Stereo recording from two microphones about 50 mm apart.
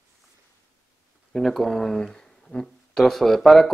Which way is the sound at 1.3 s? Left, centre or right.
Centre.